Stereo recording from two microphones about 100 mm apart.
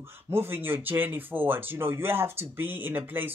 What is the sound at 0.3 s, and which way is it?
Speech, 25° right (ahead or behind).